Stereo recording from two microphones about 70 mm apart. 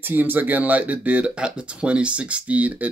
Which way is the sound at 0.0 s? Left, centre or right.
Right.